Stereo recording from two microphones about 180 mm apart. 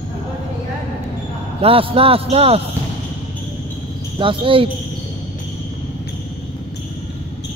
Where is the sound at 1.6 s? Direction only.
30° right (ahead or behind).